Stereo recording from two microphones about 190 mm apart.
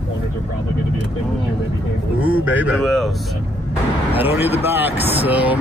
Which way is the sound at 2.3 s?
10° right (ahead or behind).